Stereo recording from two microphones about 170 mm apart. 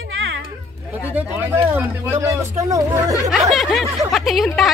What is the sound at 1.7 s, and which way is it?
Speech, 15° right (ahead or behind).